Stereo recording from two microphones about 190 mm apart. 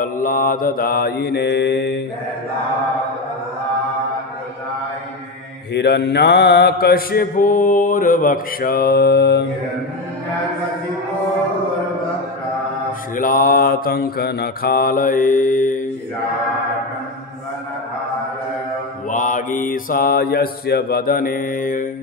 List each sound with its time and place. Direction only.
0.0 s mantra: 45° left (ahead or behind); by 2.0 s 60° left (ahead or behind)
5.7 s mantra: 65° left (ahead or behind)
13.1 s mantra: 45° left (ahead or behind)
19.0 s mantra: 45° left (ahead or behind)